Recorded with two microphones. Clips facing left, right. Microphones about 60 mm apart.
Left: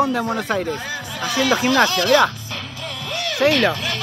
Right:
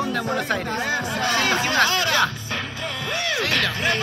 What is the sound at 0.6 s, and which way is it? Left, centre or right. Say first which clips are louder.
Speech: right 2 dB; right.